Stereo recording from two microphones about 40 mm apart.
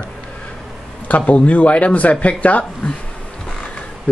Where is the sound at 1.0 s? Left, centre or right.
Left.